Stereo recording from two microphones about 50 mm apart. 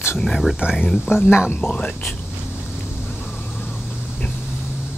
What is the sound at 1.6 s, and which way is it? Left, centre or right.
Speech, left.